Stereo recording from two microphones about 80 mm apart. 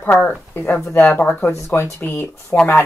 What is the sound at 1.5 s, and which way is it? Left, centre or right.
Speech, left.